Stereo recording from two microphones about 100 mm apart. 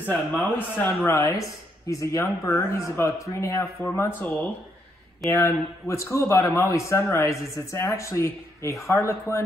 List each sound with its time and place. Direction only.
0.0 s speech: 15° left (ahead or behind)
5.3 s speech: 30° left (ahead or behind)